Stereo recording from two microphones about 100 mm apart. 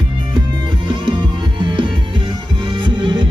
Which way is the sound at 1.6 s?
55° right (ahead or behind).